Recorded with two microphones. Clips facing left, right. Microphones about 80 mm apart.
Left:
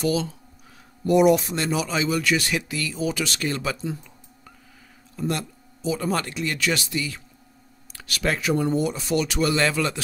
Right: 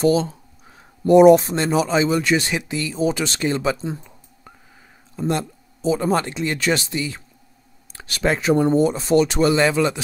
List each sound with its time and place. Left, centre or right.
0.0 s speech: right